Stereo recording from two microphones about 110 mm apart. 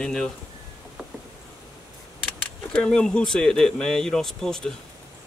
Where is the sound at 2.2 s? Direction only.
10° left (ahead or behind).